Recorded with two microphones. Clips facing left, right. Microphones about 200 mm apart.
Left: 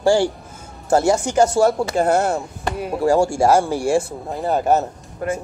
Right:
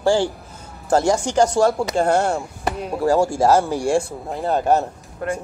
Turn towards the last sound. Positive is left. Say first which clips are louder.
# left 1 dB
turn(degrees=5)  # may be behind; listen again after turning